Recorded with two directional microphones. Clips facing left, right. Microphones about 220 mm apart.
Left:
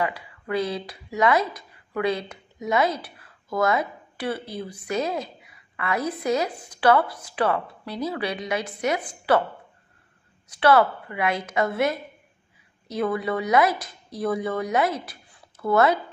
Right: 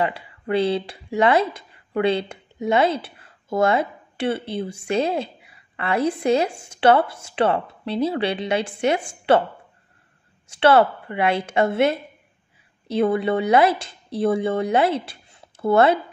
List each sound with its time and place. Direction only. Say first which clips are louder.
0.0 s speech: right 3 dB; 30° right (ahead or behind)
10.5 s speech: right 3 dB; 25° right (ahead or behind)